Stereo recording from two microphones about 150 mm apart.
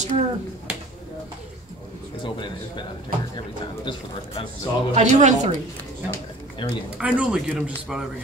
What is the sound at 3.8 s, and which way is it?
A man's voice, 35° left (ahead or behind).